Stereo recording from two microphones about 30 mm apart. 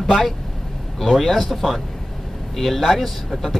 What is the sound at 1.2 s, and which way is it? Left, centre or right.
Speech, centre.